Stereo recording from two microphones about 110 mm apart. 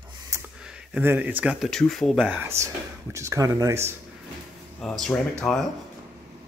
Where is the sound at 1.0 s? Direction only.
15° right (ahead or behind).